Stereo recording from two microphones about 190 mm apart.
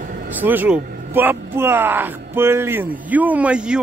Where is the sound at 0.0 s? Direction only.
50° right (ahead or behind).